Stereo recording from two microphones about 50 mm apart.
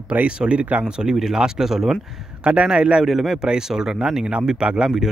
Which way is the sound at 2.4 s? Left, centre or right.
Right.